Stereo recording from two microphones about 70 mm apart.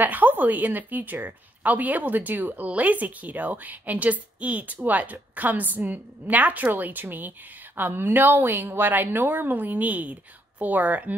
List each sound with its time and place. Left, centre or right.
0.0 s a woman's voice: right